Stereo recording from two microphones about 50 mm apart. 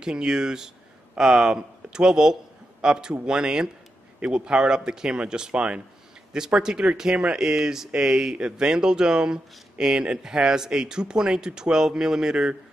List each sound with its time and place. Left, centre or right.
0.0 s speech: centre